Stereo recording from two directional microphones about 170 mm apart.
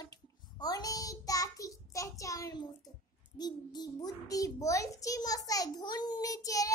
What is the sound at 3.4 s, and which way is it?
A child's voice, 25° left (ahead or behind).